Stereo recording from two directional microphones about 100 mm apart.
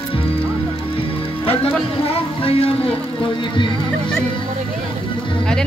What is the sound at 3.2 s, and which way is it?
Speech, 55° left (ahead or behind).